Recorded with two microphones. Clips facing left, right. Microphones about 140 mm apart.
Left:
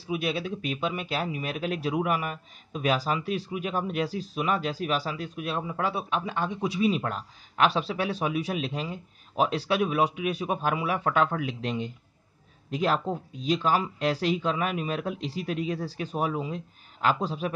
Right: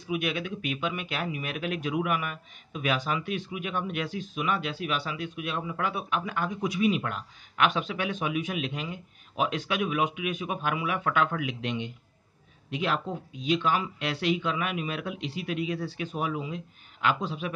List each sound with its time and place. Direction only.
0.0 s speech: 30° left (ahead or behind)